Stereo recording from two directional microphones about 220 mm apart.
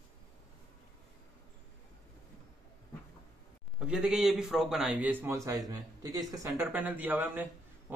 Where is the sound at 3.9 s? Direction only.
5° right (ahead or behind).